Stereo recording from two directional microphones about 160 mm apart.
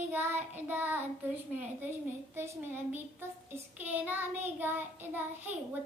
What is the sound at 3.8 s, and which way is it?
Child singing, 10° right (ahead or behind).